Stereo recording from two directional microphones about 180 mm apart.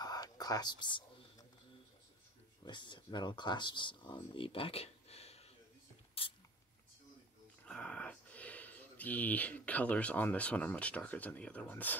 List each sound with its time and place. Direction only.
0.0 s whispering: 20° left (ahead or behind)
2.6 s speech: 25° left (ahead or behind)
6.2 s a sound: 30° left (ahead or behind)
7.6 s speech: 5° left (ahead or behind)